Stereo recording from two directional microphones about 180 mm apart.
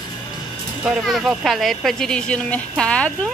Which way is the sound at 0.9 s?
Centre (ahead or behind).